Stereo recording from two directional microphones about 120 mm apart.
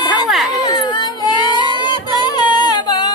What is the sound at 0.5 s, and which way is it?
Child singing, 35° left (ahead or behind).